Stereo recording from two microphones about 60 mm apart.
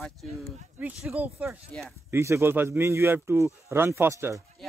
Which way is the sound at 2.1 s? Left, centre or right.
Right.